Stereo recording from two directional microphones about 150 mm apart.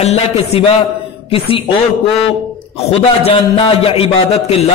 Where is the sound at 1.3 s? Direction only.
40° left (ahead or behind).